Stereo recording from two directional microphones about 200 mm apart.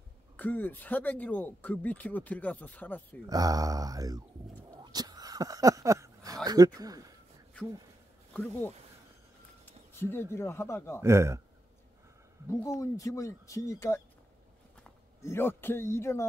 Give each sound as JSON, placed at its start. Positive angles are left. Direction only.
{"t": 0.4, "sound": "speech", "side_deg": 10}
{"t": 3.3, "sound": "mantra", "side_deg": -20}
{"t": 4.6, "sound": "a sound", "side_deg": -20}
{"t": 8.3, "sound": "speech", "side_deg": 5}
{"t": 11.0, "sound": "speech", "side_deg": -15}
{"t": 12.4, "sound": "speech", "side_deg": 15}